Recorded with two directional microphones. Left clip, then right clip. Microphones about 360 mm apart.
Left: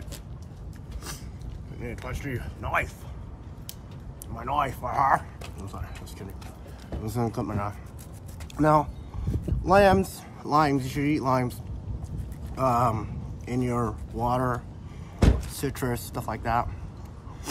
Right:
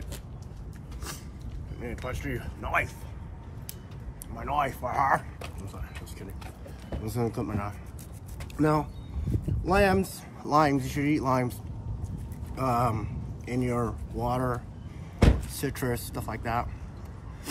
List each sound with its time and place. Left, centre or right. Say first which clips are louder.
1.8 s speech: right 1 dB; centre
4.4 s speech: left 1 dB; centre
7.0 s speech: left 1 dB; centre
12.5 s speech: left 3 dB; centre
15.2 s vehicle: even; centre
15.6 s speech: left 1 dB; centre